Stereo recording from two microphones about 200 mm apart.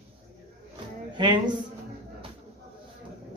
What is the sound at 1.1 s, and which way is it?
Speech, 25° right (ahead or behind).